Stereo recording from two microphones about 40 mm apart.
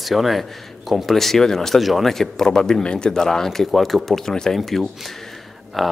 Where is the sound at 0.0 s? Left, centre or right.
Centre.